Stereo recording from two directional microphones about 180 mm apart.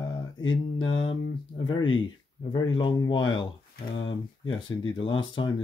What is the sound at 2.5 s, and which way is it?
Speech, 25° left (ahead or behind).